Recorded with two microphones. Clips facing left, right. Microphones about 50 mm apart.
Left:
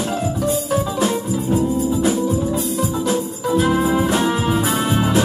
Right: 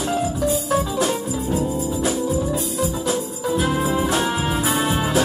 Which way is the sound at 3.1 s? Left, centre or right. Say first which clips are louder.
Left 3 dB; centre.